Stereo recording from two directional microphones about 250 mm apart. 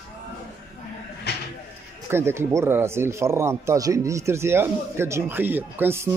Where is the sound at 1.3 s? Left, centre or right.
Left.